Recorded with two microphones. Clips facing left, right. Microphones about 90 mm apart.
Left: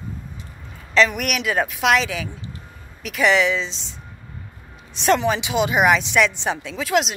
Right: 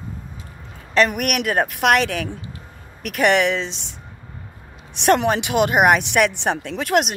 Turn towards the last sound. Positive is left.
turn(degrees=-55)  # may be behind; listen again after turning